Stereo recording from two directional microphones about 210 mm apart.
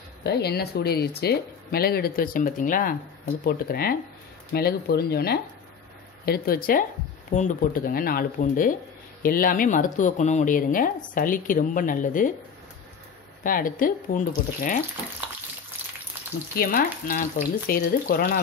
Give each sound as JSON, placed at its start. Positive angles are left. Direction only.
{"t": 0.2, "sound": "speech", "side_deg": 50}
{"t": 13.4, "sound": "speech", "side_deg": 40}
{"t": 15.2, "sound": "frying", "side_deg": -5}
{"t": 16.5, "sound": "speech", "side_deg": 40}